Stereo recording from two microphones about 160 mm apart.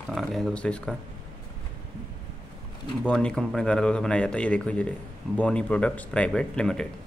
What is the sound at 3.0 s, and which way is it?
A man's voice, 5° left (ahead or behind).